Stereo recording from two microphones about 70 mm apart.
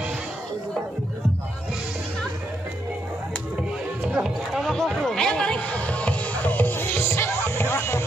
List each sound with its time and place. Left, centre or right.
4.0 s horse: centre
4.6 s music: centre; by 8.0 s left